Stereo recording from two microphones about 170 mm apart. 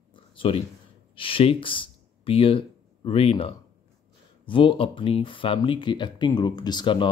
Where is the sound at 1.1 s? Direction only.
30° left (ahead or behind).